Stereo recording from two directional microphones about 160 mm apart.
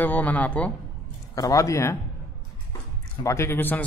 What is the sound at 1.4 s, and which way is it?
Speech, 20° left (ahead or behind).